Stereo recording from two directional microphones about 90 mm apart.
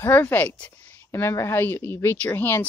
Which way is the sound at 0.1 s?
25° left (ahead or behind).